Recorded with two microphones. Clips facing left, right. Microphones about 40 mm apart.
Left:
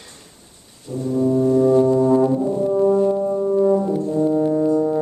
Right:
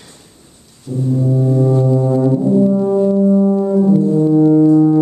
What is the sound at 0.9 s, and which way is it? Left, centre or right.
Brass instrument, centre.